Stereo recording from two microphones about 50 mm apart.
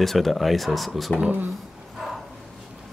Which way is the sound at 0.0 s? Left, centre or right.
Centre.